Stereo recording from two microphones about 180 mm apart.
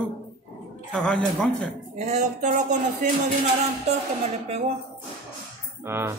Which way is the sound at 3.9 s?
40° right (ahead or behind).